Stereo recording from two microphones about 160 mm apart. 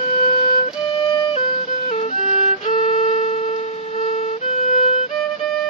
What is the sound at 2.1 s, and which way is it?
Violin, 45° left (ahead or behind).